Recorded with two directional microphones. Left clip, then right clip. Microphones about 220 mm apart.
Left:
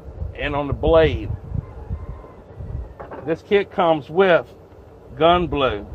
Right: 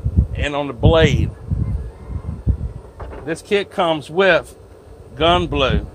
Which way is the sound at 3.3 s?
25° right (ahead or behind).